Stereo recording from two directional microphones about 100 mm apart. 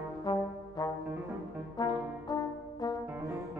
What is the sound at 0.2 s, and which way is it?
Brass instrument, 40° left (ahead or behind).